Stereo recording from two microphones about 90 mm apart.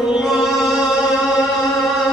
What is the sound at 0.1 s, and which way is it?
Music, 5° right (ahead or behind).